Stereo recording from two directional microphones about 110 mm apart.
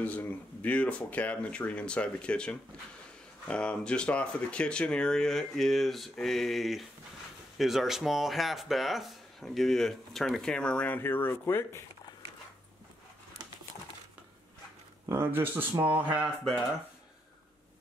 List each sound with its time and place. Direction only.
0.0 s speech: 15° left (ahead or behind)
15.0 s speech: 20° right (ahead or behind)